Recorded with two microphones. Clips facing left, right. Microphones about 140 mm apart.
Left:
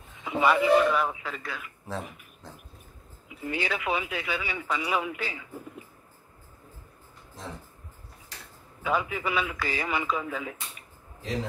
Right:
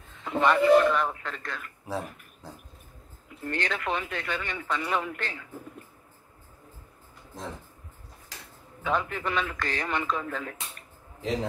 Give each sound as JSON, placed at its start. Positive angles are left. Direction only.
{"t": 0.2, "sound": "speech", "side_deg": 5}
{"t": 2.4, "sound": "dog", "side_deg": -10}
{"t": 3.3, "sound": "speech", "side_deg": 5}
{"t": 8.8, "sound": "speech", "side_deg": 5}